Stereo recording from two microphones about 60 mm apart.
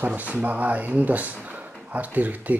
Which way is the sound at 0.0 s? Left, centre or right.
Right.